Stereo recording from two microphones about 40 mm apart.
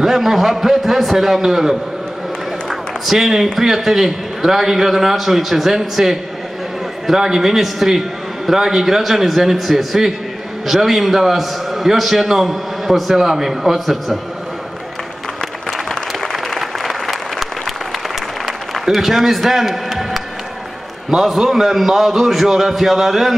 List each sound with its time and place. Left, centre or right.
0.0 s a man's voice: centre
2.7 s a sound: centre
3.5 s a man's voice: centre
15.9 s applause: centre
18.4 s a sound: centre
21.1 s a man's voice: centre